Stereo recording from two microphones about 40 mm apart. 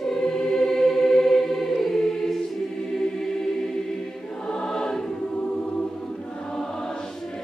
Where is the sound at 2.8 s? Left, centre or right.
Centre.